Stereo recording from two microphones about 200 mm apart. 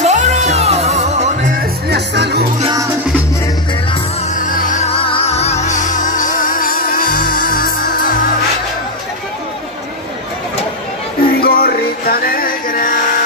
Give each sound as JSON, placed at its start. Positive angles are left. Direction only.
{"t": 0.0, "sound": "music", "side_deg": -35}
{"t": 1.9, "sound": "music", "side_deg": -55}
{"t": 2.6, "sound": "music", "side_deg": -20}
{"t": 4.3, "sound": "music", "side_deg": 40}
{"t": 11.3, "sound": "music", "side_deg": 50}